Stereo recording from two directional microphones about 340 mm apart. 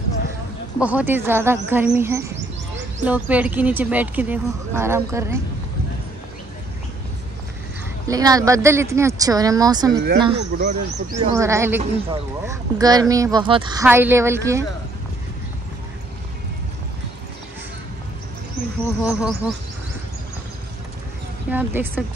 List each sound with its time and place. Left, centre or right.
0.7 s speech: centre
8.1 s speech: centre
19.0 s speech: centre
21.5 s speech: centre